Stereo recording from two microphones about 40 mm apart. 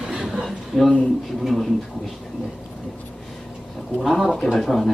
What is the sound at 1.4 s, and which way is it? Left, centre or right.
Speech, centre.